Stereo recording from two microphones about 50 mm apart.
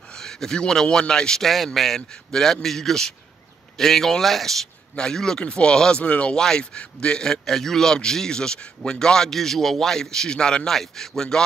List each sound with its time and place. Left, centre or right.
0.1 s a man's voice: centre
1.4 s a man's voice: centre